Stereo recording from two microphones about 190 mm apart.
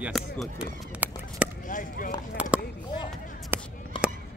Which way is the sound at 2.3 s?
5° right (ahead or behind).